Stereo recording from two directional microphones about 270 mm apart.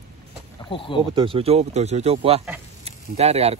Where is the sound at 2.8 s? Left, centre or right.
Right.